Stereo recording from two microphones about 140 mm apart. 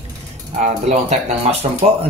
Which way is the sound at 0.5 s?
55° right (ahead or behind).